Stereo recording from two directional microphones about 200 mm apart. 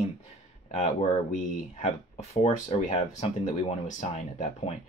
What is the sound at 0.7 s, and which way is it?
Speech, 35° left (ahead or behind).